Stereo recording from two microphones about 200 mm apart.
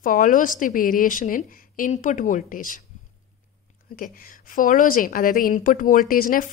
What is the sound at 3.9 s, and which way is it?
A woman's voice, 45° left (ahead or behind).